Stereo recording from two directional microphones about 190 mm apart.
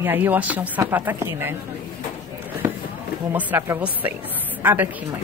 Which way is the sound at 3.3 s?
10° right (ahead or behind).